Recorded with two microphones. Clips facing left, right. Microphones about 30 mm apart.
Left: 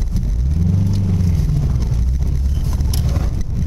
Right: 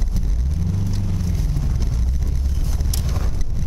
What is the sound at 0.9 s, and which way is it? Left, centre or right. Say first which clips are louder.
Vehicle: left 6 dB; centre.